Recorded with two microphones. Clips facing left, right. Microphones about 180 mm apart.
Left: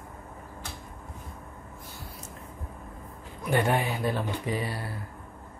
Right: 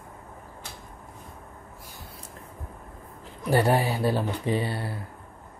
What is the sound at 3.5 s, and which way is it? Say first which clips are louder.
Speech: right 3 dB; 35° right (ahead or behind).